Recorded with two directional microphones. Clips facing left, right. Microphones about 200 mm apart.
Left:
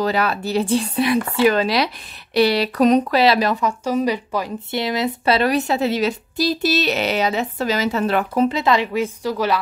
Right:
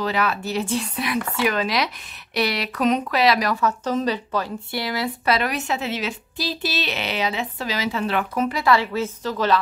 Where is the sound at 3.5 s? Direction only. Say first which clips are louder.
Left 2 dB; 10° left (ahead or behind); by 8.4 s 40° left (ahead or behind).